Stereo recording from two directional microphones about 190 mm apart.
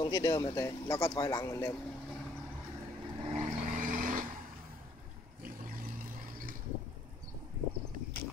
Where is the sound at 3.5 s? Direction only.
35° right (ahead or behind).